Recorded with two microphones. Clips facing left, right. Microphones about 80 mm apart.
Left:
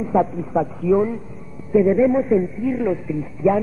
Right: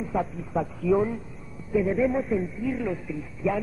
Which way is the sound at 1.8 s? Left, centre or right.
Centre.